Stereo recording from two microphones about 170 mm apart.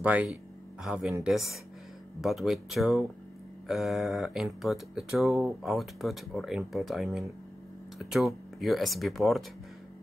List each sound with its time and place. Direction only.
0.0 s speech: 10° right (ahead or behind)